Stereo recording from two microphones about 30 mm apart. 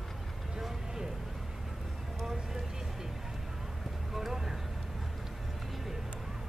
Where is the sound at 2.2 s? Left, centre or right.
Centre.